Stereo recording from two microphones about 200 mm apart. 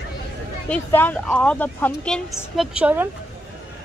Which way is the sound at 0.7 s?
10° left (ahead or behind).